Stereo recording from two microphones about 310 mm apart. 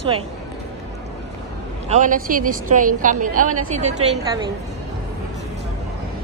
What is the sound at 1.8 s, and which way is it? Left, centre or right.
A woman's voice, right.